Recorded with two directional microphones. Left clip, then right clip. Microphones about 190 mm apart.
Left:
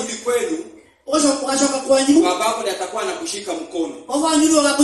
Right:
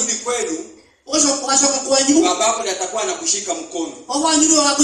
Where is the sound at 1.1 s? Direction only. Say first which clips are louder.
Even; 30° right (ahead or behind).